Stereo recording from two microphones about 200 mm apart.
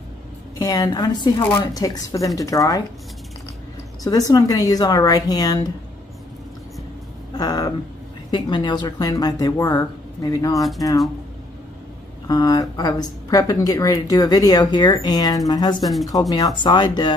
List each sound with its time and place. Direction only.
0.6 s speech: 20° left (ahead or behind)
4.0 s speech: 15° left (ahead or behind)
7.3 s speech: 20° left (ahead or behind)
12.3 s speech: 20° left (ahead or behind)